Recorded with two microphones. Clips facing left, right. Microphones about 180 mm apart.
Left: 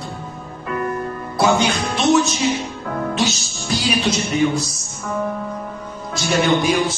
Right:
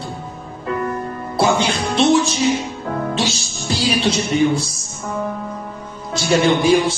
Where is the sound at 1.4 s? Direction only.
30° right (ahead or behind).